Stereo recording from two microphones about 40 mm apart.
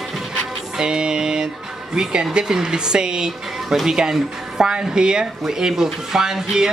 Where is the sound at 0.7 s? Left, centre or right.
Right.